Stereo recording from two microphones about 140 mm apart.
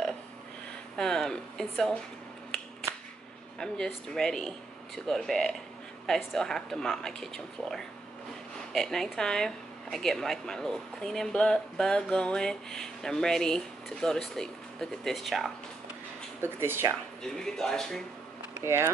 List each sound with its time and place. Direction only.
0.9 s speech: 5° left (ahead or behind)
3.5 s speech: 5° left (ahead or behind)
16.3 s speech: 15° right (ahead or behind)
17.2 s speech: 5° left (ahead or behind)
18.5 s speech: 20° right (ahead or behind)